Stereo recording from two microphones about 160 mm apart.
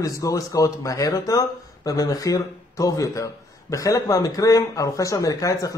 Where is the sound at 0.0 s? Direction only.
20° left (ahead or behind).